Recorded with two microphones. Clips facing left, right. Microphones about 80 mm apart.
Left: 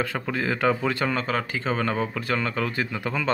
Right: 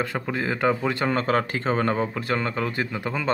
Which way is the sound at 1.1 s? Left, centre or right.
Right.